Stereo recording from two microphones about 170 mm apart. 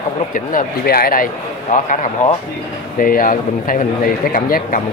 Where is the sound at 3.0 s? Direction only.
55° left (ahead or behind).